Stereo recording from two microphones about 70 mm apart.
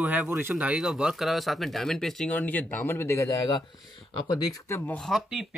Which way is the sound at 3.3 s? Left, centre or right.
Left.